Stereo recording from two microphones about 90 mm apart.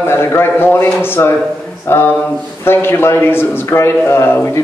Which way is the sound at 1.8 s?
25° left (ahead or behind).